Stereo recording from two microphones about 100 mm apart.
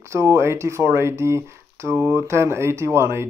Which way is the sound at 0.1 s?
30° right (ahead or behind).